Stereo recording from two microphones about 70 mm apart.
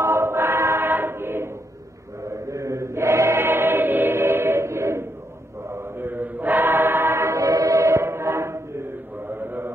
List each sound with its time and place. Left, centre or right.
0.0 s choir: right
2.2 s chant: right
5.7 s choir: right